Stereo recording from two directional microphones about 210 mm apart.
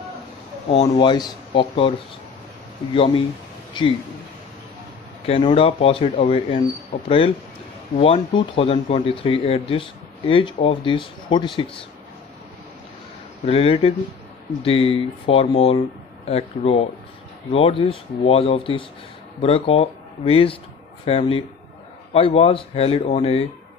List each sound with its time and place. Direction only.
0.7 s speech: 25° left (ahead or behind)
3.8 s speech: 20° left (ahead or behind)
5.2 s speech: 25° left (ahead or behind)
13.5 s speech: 30° left (ahead or behind)